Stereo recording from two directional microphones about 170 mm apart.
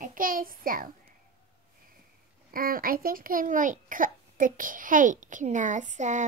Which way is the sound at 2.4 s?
60° right (ahead or behind).